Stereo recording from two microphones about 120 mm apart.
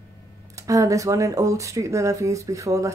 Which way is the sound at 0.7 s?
25° right (ahead or behind).